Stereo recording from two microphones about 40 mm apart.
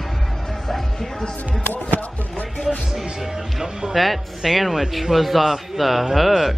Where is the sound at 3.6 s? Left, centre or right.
Centre.